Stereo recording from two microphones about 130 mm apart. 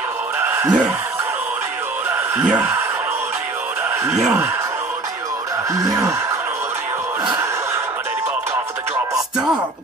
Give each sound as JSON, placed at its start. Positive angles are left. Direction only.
{"t": 0.4, "sound": "a sound", "side_deg": -15}
{"t": 2.3, "sound": "speech", "side_deg": -10}
{"t": 4.1, "sound": "speech", "side_deg": -10}
{"t": 5.7, "sound": "snicker", "side_deg": -25}